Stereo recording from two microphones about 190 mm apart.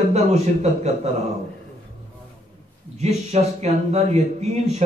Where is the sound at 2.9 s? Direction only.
35° right (ahead or behind).